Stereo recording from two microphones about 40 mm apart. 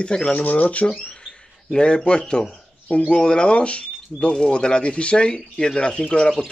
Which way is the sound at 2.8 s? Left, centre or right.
Left.